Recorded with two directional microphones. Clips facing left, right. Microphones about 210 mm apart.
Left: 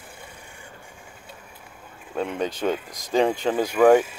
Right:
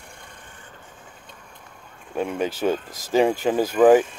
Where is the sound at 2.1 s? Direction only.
10° right (ahead or behind).